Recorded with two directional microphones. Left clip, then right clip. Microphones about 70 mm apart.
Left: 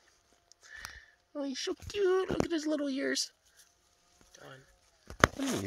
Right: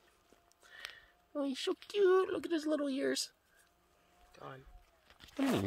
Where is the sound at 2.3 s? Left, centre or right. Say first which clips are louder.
Left 3 dB; left.